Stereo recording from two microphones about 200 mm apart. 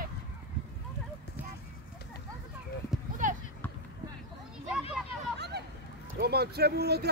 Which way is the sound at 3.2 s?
40° right (ahead or behind).